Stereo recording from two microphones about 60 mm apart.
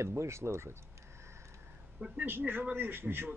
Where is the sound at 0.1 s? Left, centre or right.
Right.